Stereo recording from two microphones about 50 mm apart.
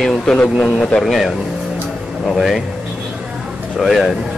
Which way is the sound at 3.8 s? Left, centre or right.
Centre.